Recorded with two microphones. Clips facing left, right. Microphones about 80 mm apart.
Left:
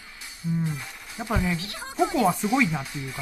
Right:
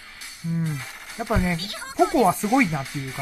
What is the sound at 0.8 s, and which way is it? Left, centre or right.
Speech, centre.